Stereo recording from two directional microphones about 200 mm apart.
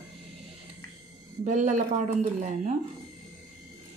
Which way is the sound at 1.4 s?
35° right (ahead or behind).